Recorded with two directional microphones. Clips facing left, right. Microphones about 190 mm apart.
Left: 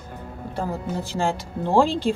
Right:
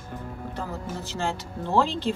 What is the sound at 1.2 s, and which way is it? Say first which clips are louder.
Speech: left 5 dB; 50° left (ahead or behind).